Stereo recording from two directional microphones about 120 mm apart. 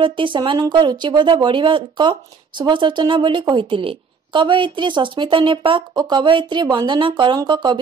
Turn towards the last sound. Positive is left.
turn(degrees=-40)  # may be behind; listen again after turning